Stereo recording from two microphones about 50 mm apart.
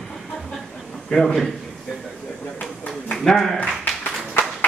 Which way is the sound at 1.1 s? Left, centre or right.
Centre.